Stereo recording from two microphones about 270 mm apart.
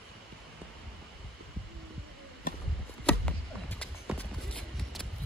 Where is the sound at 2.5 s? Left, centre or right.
Left.